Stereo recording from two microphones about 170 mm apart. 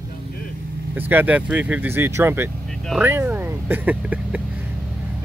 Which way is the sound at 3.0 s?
15° right (ahead or behind).